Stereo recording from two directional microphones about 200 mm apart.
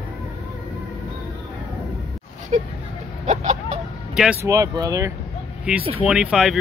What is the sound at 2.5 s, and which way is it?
Speech, 35° right (ahead or behind).